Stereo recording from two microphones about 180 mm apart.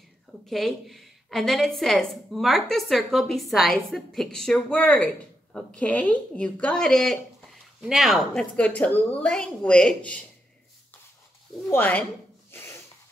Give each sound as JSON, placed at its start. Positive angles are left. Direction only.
{"t": 0.5, "sound": "a woman's voice", "side_deg": 0}
{"t": 11.7, "sound": "speech", "side_deg": 10}
{"t": 12.4, "sound": "rub", "side_deg": 15}